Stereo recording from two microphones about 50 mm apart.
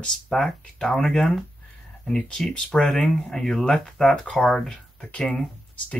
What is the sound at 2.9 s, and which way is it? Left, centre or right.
Speech, centre.